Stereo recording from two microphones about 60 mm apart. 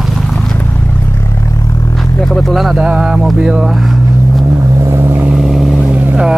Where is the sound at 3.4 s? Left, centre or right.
Centre.